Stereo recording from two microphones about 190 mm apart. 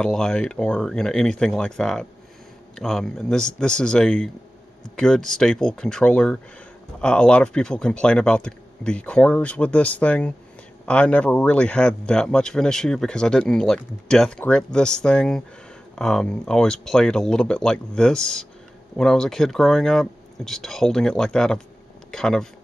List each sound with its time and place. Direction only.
0.0 s speech: 5° left (ahead or behind)